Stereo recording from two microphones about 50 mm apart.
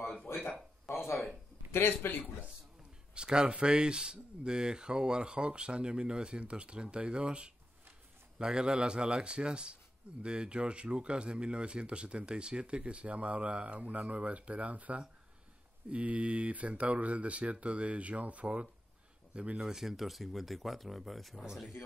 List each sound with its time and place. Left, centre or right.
1.7 s a man's voice: left
3.2 s speech: centre
19.7 s speech: centre